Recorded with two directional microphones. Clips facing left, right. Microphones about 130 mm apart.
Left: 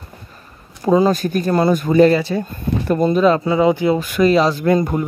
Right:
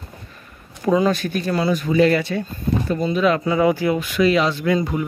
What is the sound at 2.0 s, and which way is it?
Speech, 35° left (ahead or behind).